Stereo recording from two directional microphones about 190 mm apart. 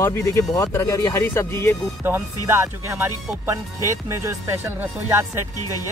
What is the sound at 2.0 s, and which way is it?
Speech, 15° right (ahead or behind).